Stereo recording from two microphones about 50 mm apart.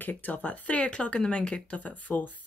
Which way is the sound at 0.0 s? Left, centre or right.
Left.